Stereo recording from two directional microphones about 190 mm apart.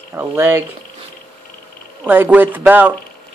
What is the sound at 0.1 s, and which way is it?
Speech, 10° right (ahead or behind).